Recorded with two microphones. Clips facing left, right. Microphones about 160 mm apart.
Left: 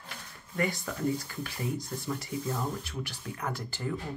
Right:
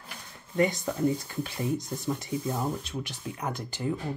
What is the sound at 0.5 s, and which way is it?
Speech, 20° right (ahead or behind).